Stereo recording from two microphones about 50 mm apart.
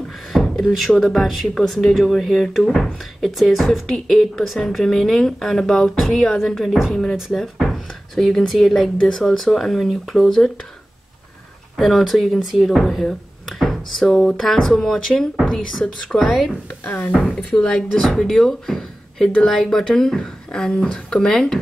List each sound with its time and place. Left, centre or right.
0.3 s speech: centre
1.5 s speech: centre
1.8 s speech: centre
7.3 s music: centre
8.5 s speech: centre
11.7 s speech: centre
17.0 s speech: left
18.0 s speech: centre